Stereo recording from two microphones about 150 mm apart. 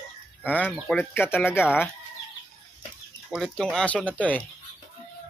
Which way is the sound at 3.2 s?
Centre (ahead or behind).